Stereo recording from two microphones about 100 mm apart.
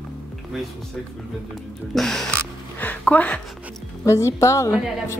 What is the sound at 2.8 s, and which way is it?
Speech, 15° left (ahead or behind).